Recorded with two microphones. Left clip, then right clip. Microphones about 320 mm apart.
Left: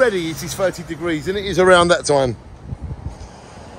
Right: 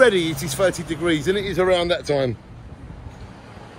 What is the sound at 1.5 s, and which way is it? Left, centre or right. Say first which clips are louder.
Speech: left 8 dB; left.